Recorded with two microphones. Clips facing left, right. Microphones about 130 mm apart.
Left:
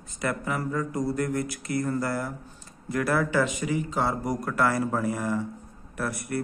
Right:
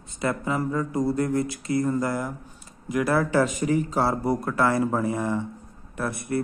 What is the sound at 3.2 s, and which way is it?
A man's voice, 35° right (ahead or behind).